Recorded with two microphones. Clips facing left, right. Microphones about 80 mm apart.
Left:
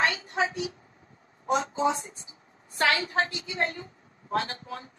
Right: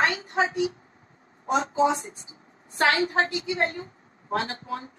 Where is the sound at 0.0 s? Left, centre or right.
Right.